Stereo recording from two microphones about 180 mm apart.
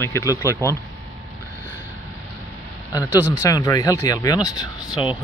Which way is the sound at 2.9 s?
15° left (ahead or behind).